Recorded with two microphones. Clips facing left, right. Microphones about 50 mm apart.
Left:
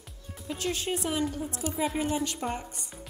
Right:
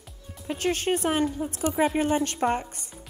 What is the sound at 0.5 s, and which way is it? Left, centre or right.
A woman's voice, right.